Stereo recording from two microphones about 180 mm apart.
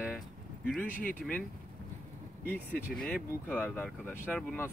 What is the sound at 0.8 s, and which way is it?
Speech, 50° left (ahead or behind).